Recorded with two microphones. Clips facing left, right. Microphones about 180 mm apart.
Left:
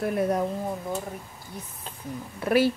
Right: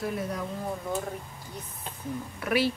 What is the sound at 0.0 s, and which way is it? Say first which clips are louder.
Speech: left 7 dB; 55° left (ahead or behind).